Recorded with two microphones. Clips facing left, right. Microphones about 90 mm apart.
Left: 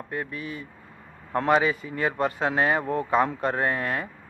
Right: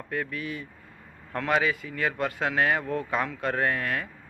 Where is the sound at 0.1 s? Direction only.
25° left (ahead or behind).